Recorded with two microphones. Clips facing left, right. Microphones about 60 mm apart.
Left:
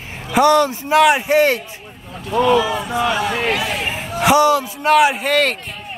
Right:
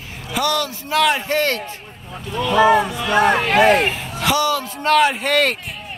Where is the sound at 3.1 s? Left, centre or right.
Right.